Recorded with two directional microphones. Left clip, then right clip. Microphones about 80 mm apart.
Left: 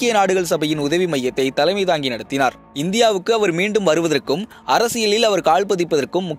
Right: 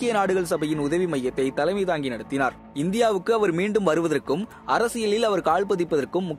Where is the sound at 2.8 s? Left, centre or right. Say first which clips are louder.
Left 6 dB; centre.